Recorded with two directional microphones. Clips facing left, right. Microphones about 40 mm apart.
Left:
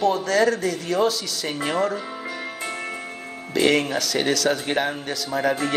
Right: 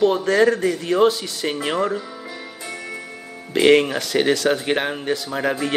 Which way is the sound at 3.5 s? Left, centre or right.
Right.